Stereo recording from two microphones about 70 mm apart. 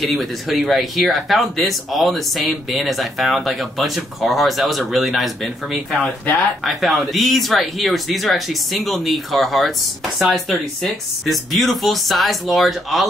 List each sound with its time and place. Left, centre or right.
0.0 s speech: centre